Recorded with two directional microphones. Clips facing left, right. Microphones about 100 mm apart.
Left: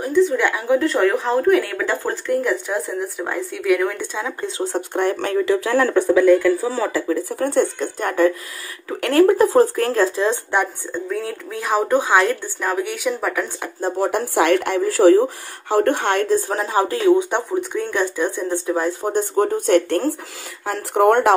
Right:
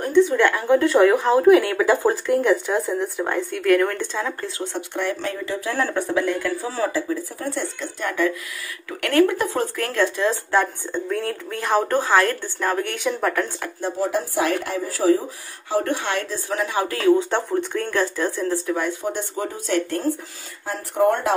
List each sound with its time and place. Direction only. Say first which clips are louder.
0.0 s a sound: even; centre (ahead or behind)
0.5 s speech: right 1 dB; 5° left (ahead or behind)
4.7 s speech: left 5 dB; 45° left (ahead or behind); by 6.0 s 90° left
7.1 s speech: left 6 dB; 65° left (ahead or behind); by 8.3 s 45° left (ahead or behind)
9.0 s speech: left 4 dB; 30° left (ahead or behind)
10.9 s speech: even; centre (ahead or behind)
14.0 s speech: left 4 dB; 60° left (ahead or behind); by 18.9 s 25° left (ahead or behind)
18.9 s speech: left 5 dB; 45° left (ahead or behind); by 21.3 s 65° left (ahead or behind)